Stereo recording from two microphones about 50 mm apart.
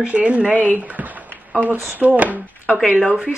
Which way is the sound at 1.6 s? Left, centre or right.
Right.